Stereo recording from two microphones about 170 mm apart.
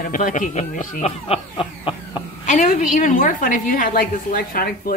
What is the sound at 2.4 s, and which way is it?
A woman's voice, 45° left (ahead or behind).